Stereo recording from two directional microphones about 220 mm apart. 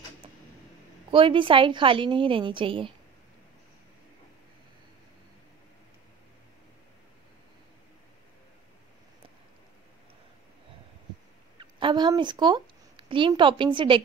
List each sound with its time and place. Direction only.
1.1 s a woman's voice: 25° right (ahead or behind)
11.5 s a woman's voice: 20° right (ahead or behind)